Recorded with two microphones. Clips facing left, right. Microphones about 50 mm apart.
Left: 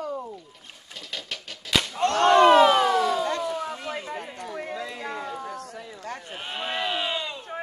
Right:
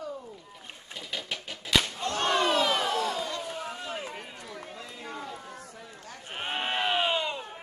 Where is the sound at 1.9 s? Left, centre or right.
Left.